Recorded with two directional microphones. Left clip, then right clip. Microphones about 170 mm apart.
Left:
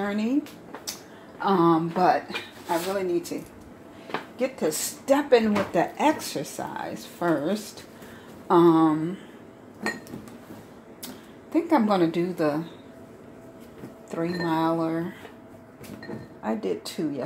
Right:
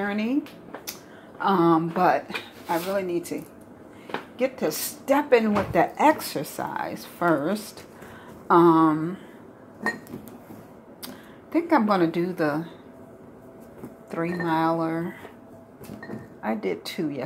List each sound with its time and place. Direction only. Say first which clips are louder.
0.0 s speech: even; centre (ahead or behind)
1.4 s speech: right 1 dB; centre (ahead or behind)
4.4 s speech: right 1 dB; 5° right (ahead or behind)
11.5 s speech: right 1 dB; centre (ahead or behind)
14.1 s speech: right 1 dB; centre (ahead or behind)
16.4 s a woman's voice: right 1 dB; 5° right (ahead or behind)